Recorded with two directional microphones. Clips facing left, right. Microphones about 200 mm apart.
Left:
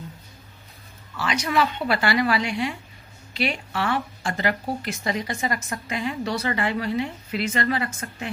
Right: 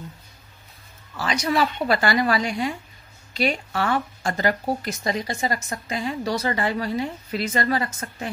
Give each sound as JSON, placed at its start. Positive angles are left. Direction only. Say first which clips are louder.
{"t": 1.1, "sound": "speech", "louder": "right 1 dB", "side_deg": -40}